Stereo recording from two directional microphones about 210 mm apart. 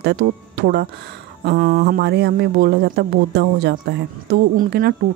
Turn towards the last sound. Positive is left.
turn(degrees=-45)  # may be behind; listen again after turning